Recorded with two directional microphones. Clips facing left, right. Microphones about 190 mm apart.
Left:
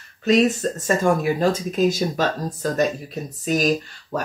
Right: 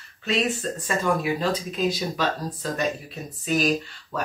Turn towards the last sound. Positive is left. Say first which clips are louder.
# left 3 dB
turn(degrees=40)  # may be behind; listen again after turning